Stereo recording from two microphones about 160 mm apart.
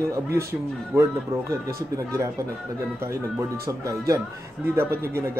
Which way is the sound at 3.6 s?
20° right (ahead or behind).